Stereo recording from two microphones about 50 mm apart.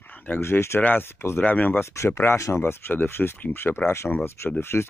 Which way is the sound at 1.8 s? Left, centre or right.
Left.